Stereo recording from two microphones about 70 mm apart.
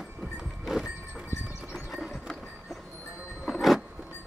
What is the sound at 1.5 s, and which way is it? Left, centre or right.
Clip-clop, centre.